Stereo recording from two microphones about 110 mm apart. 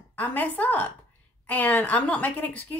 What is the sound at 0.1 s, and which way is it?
Speech, 15° left (ahead or behind).